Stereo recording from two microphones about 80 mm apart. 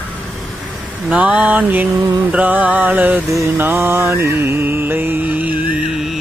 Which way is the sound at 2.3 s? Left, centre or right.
Centre.